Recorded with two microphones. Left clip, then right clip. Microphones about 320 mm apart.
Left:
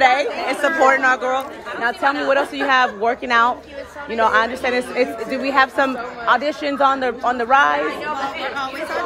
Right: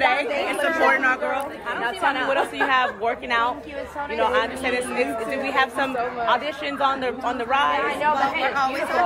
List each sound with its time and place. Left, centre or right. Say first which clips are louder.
0.0 s chatter: left 5 dB; centre
1.9 s speech: left 5 dB; left
5.5 s speech: left 7 dB; left